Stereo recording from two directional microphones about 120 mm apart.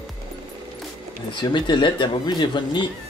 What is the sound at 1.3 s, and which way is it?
Speech, 40° left (ahead or behind).